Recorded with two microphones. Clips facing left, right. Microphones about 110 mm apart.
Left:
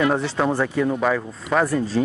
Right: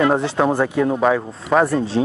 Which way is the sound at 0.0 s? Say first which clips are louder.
Right 3 dB; 25° right (ahead or behind).